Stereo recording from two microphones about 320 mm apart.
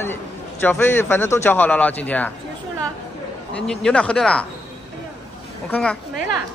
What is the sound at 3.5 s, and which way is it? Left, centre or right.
Speech, centre.